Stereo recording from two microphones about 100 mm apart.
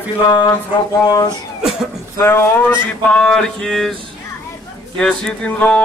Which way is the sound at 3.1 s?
10° left (ahead or behind).